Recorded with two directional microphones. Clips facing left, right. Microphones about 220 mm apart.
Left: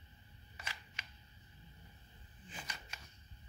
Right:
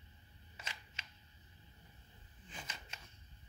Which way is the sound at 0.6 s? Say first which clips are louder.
Left 1 dB; 20° right (ahead or behind).